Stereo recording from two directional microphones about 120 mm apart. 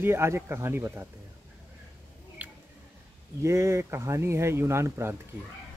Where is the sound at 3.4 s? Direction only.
25° right (ahead or behind).